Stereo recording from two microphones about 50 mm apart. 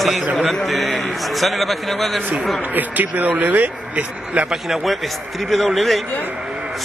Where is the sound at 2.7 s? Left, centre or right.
Right.